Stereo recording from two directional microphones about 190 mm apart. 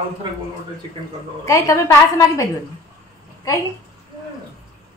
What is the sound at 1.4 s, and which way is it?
Speech, 15° left (ahead or behind).